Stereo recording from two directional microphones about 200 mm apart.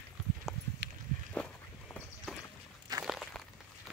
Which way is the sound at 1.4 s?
5° left (ahead or behind).